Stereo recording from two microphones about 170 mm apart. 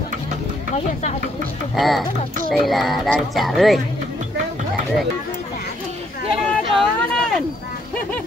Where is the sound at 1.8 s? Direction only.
Centre (ahead or behind).